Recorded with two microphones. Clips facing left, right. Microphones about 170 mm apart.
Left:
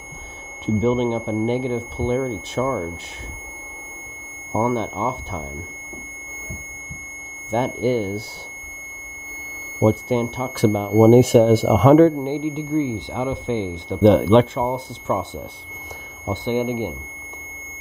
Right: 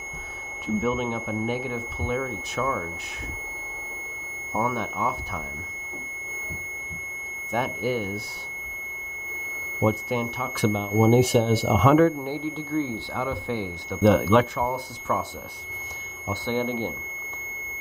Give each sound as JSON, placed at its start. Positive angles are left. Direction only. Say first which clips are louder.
{"t": 0.7, "sound": "speech", "louder": "left 7 dB", "side_deg": 25}
{"t": 4.5, "sound": "speech", "louder": "left 6 dB", "side_deg": 25}
{"t": 7.5, "sound": "speech", "louder": "left 6 dB", "side_deg": 25}
{"t": 9.8, "sound": "speech", "louder": "left 6 dB", "side_deg": 30}
{"t": 12.2, "sound": "speech", "louder": "left 6 dB", "side_deg": 20}
{"t": 16.3, "sound": "speech", "louder": "left 5 dB", "side_deg": 15}